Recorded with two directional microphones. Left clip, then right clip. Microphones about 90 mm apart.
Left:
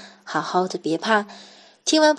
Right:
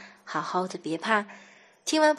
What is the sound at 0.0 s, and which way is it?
Speech, 40° left (ahead or behind).